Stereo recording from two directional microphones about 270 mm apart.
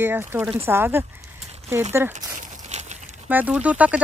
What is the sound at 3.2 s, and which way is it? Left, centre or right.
Speech, centre.